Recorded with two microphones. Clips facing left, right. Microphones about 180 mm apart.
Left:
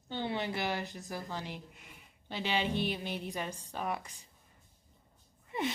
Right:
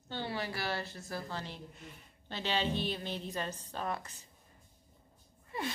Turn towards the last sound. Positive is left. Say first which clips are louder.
# left 4 dB
turn(degrees=20)  # may be behind; listen again after turning